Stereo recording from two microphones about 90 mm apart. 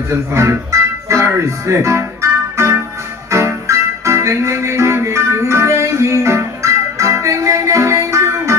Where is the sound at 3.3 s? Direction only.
35° right (ahead or behind).